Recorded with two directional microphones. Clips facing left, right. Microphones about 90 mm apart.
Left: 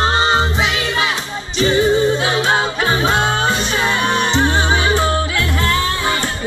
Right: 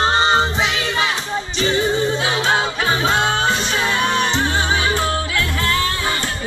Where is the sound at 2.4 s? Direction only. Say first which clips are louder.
Left 2 dB; 15° left (ahead or behind).